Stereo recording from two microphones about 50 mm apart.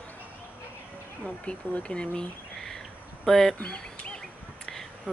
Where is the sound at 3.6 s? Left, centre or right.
Left.